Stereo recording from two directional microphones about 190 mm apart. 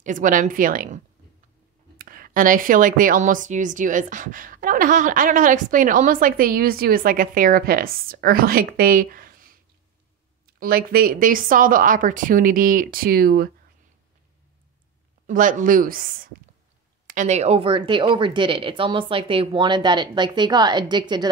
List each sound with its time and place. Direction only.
0.0 s speech: 45° right (ahead or behind)
10.6 s speech: 50° right (ahead or behind)
15.2 s speech: 45° right (ahead or behind); by 21.3 s 25° right (ahead or behind)